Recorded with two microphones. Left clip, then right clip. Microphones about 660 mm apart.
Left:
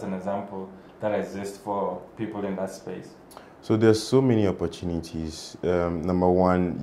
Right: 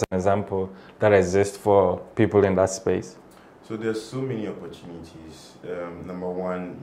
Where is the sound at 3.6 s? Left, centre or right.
Left.